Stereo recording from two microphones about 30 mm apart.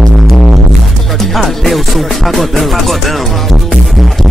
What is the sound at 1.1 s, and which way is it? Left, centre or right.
Music, centre.